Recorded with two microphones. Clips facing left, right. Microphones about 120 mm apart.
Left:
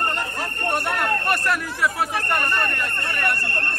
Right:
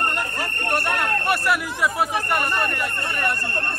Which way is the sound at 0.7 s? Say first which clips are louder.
Left 1 dB; centre (ahead or behind).